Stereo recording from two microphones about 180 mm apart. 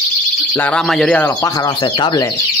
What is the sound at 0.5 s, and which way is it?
Speech, 5° left (ahead or behind).